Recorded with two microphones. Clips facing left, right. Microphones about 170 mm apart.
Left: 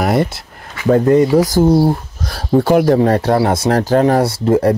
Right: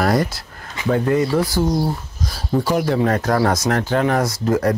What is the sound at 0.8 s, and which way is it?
Speech, 40° left (ahead or behind).